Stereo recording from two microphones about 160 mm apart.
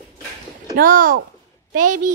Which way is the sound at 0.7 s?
60° right (ahead or behind).